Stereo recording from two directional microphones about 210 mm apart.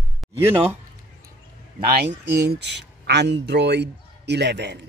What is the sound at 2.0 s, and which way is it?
Speech, 50° right (ahead or behind).